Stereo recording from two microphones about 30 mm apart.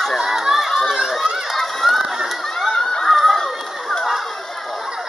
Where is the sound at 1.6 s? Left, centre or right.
Centre.